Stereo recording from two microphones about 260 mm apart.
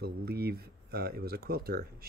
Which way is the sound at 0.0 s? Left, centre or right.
Right.